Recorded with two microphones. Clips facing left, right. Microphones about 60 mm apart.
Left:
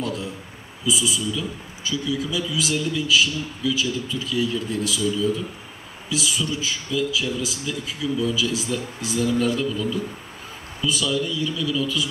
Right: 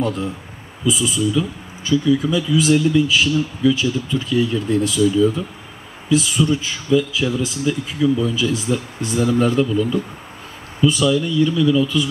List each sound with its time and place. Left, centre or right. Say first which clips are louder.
0.0 s a man's voice: right 6 dB; right
9.2 s speech: right 5 dB; right